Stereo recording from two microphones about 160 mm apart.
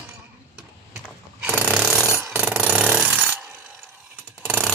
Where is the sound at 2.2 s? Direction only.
5° right (ahead or behind).